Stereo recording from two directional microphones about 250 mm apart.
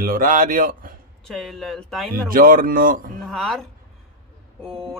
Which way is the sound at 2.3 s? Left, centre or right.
Right.